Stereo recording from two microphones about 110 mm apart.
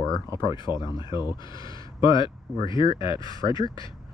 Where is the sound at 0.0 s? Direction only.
40° left (ahead or behind).